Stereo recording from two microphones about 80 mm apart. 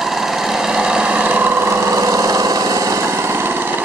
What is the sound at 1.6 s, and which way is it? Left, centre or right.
Lawn mower, right.